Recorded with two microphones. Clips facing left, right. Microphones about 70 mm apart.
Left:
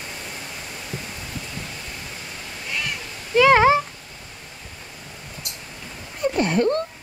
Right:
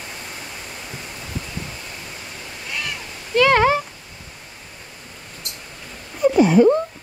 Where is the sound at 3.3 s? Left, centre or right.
Centre.